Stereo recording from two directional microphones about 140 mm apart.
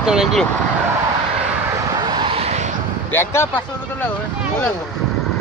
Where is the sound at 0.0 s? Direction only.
5° right (ahead or behind).